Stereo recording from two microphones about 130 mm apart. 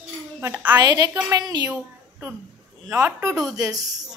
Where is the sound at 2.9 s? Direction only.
20° right (ahead or behind).